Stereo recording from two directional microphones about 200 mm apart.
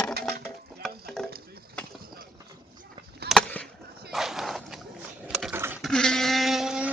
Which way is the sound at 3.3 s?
5° left (ahead or behind).